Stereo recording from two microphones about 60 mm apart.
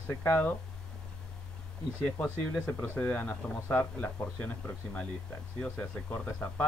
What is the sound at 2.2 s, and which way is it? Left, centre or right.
Speech, left.